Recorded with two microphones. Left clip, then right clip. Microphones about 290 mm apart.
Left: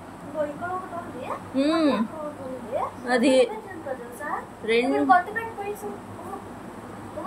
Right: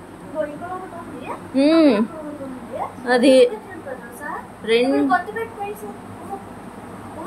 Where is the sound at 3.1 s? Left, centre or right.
Centre.